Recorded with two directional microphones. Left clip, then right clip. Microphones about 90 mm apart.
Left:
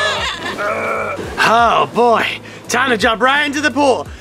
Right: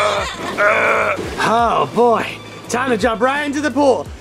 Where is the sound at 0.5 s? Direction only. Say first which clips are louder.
Right 8 dB; 30° right (ahead or behind).